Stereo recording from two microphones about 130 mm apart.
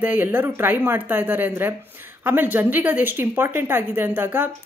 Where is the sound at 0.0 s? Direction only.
15° right (ahead or behind).